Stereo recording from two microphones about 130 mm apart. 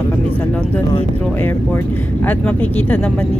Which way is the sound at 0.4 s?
10° left (ahead or behind).